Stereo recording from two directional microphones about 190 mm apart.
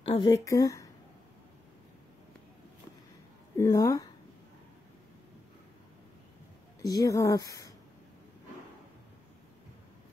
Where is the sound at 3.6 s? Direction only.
15° left (ahead or behind).